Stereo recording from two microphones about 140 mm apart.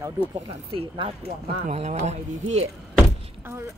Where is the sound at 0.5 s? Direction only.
40° right (ahead or behind).